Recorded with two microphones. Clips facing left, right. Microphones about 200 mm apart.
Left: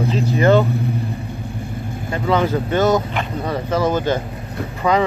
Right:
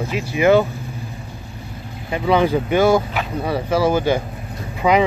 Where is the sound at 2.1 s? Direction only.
15° right (ahead or behind).